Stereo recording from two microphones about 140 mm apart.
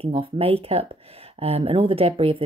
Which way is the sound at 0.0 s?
40° right (ahead or behind).